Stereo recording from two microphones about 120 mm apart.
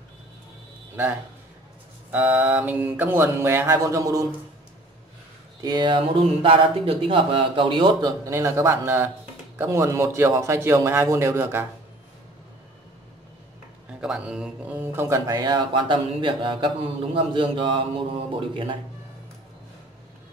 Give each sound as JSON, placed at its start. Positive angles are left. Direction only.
{"t": 2.0, "sound": "mantra", "side_deg": -15}
{"t": 5.6, "sound": "speech", "side_deg": -35}
{"t": 8.2, "sound": "mantra", "side_deg": -25}
{"t": 14.0, "sound": "speech", "side_deg": -5}